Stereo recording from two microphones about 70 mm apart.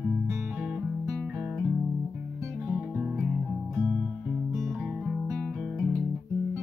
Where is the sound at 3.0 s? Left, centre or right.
Centre.